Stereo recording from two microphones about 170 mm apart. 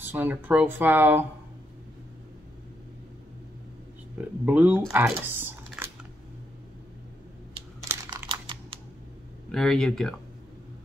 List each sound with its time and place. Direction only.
0.0 s speech: 10° right (ahead or behind)
4.5 s speech: 10° right (ahead or behind)
8.3 s crumpling: 30° right (ahead or behind)
9.5 s speech: centre (ahead or behind)